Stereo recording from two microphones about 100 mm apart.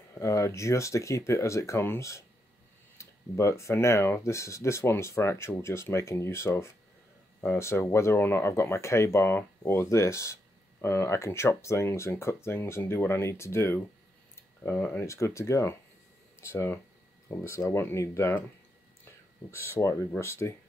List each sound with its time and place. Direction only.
0.1 s speech: 30° left (ahead or behind)
15.0 s speech: 30° left (ahead or behind)
19.5 s speech: 25° left (ahead or behind)